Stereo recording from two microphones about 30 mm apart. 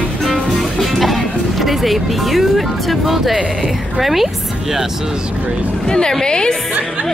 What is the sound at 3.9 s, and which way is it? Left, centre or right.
Speech, centre.